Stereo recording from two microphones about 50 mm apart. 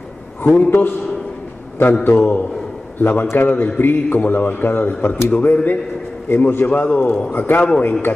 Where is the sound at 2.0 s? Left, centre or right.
Left.